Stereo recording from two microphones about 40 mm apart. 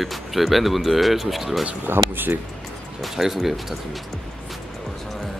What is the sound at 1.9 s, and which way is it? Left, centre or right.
Speech, right.